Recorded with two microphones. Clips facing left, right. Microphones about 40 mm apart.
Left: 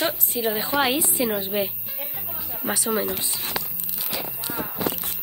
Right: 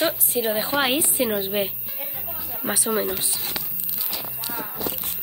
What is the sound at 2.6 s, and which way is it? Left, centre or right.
Speech, centre.